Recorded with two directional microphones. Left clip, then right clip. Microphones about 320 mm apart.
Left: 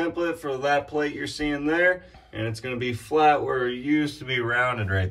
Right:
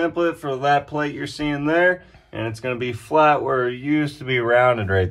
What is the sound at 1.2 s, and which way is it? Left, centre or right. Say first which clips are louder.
Speech: right 3 dB; right.